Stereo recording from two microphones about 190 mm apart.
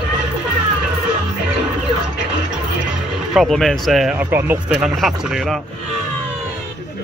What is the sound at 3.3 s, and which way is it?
Speech, centre (ahead or behind).